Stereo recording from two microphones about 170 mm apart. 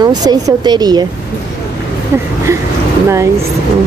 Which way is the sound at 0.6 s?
25° right (ahead or behind).